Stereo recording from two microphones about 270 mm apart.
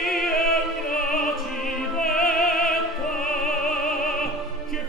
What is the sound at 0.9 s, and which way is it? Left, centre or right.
Opera, centre.